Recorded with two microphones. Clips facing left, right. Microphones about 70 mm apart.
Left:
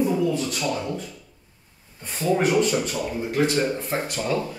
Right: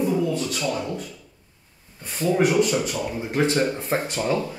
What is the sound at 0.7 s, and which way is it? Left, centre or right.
Speech, centre.